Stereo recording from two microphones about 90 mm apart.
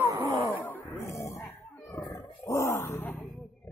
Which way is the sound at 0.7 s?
25° left (ahead or behind).